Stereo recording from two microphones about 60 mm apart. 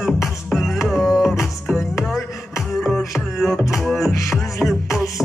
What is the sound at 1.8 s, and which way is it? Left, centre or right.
Music, centre.